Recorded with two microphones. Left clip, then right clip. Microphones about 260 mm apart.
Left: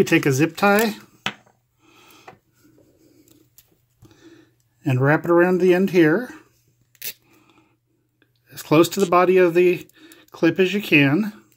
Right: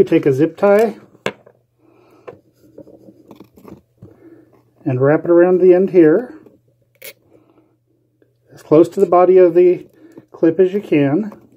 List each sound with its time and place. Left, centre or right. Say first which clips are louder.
0.0 s speech: right 5 dB; left
2.0 s wood: even; left
4.8 s speech: right 5 dB; left
8.5 s speech: right 5 dB; left